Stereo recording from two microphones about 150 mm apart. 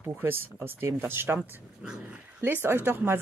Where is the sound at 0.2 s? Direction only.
15° right (ahead or behind).